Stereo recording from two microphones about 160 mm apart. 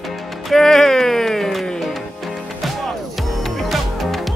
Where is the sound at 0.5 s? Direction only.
Centre (ahead or behind).